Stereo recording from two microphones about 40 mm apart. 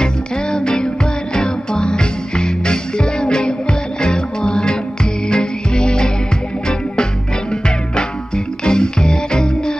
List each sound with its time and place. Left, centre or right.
0.0 s music: centre
8.6 s music: centre